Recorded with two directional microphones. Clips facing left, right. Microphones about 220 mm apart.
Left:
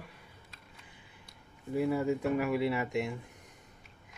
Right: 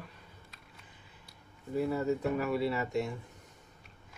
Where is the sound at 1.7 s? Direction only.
10° left (ahead or behind).